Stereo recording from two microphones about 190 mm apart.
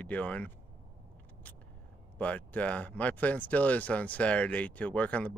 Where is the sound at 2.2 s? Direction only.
10° left (ahead or behind).